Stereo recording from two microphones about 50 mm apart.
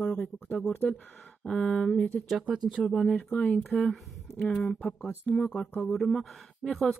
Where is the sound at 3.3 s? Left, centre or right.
Left.